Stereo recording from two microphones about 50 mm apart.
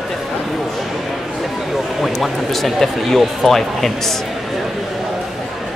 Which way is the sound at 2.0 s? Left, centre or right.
Centre.